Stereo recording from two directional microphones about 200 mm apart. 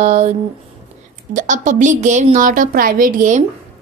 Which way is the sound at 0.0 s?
35° right (ahead or behind).